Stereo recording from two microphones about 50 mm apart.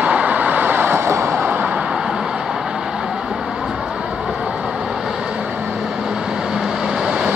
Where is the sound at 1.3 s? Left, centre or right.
Right.